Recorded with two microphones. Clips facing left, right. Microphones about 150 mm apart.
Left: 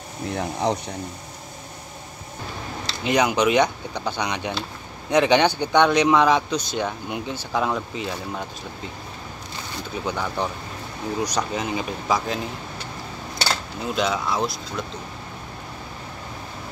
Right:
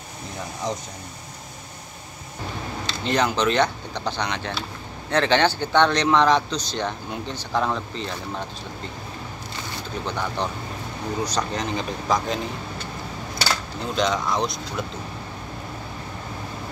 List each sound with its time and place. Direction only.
0.4 s speech: 65° left (ahead or behind)
3.0 s speech: 10° left (ahead or behind)
10.0 s speech: 5° left (ahead or behind)
13.7 s speech: 5° left (ahead or behind)